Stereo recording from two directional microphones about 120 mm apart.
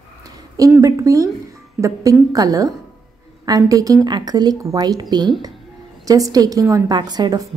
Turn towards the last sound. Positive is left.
turn(degrees=-35)  # may be behind; listen again after turning